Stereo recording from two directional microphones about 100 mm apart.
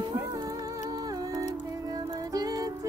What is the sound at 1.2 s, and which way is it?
Music, 40° right (ahead or behind).